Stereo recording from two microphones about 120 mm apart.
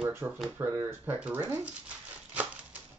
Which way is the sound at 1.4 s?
15° right (ahead or behind).